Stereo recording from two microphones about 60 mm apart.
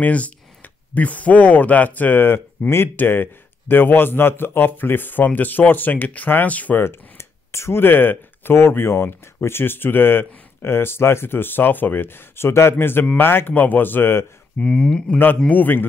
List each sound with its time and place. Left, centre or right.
0.0 s speech: left
6.8 s speech: left
14.6 s speech: centre
15.4 s a man's voice: left